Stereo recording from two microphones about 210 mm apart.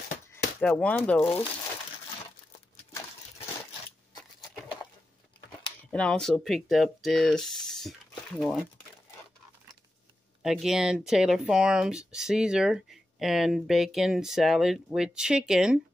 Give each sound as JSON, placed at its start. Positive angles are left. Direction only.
{"t": 0.3, "sound": "speech", "side_deg": 5}
{"t": 5.9, "sound": "speech", "side_deg": 5}
{"t": 10.4, "sound": "speech", "side_deg": 0}